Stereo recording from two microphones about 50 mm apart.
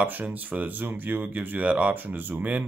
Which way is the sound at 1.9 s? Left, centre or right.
Right.